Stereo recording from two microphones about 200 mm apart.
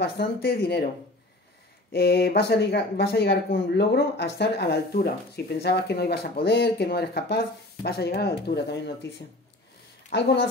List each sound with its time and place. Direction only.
0.0 s speech: 55° left (ahead or behind)
1.9 s speech: 50° left (ahead or behind)